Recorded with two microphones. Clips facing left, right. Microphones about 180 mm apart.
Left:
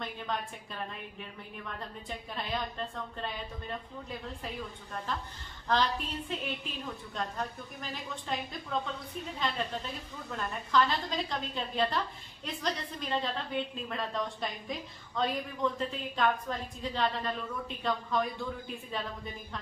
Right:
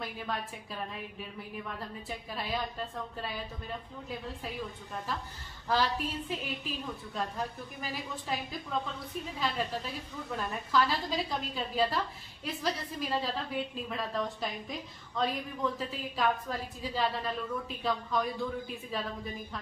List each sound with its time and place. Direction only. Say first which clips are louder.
0.0 s a woman's voice: even; 5° right (ahead or behind)
2.0 s a woman's voice: even; 5° right (ahead or behind)
5.7 s a woman's voice: even; 5° right (ahead or behind)
9.4 s a woman's voice: right 1 dB; 5° right (ahead or behind)